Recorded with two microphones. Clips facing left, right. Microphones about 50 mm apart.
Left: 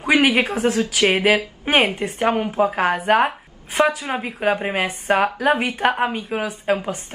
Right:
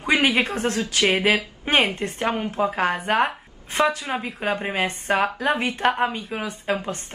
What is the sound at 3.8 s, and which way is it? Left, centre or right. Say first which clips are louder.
Speech: left 2 dB; left.